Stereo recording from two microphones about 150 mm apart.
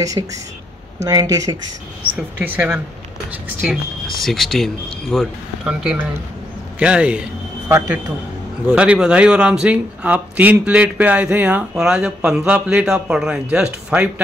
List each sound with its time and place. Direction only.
0.2 s speech: 30° right (ahead or behind)
2.1 s speech: 10° right (ahead or behind)
4.2 s speech: centre (ahead or behind)